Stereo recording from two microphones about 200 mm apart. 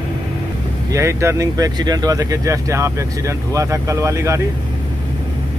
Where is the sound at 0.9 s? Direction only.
15° right (ahead or behind).